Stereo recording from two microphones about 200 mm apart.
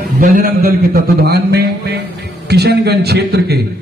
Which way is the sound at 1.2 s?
55° right (ahead or behind).